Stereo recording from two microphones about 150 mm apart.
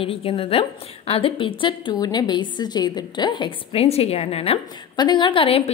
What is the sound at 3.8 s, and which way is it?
Speech, 45° left (ahead or behind).